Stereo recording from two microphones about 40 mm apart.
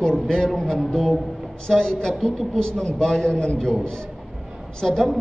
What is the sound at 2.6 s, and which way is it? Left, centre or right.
A man's voice, left.